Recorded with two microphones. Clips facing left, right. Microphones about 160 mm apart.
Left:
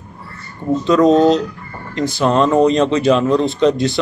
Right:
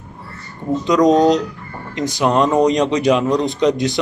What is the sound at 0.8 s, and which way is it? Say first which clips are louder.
A man's voice: left 1 dB; 15° right (ahead or behind).